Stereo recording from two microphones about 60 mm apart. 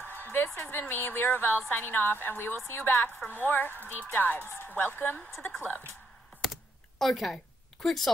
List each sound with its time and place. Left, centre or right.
0.0 s a sound: left
0.6 s speech: left
5.3 s speech: centre
6.4 s computer keyboard: centre
7.8 s speech: centre